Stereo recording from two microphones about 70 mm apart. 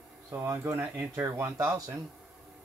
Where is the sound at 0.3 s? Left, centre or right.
Right.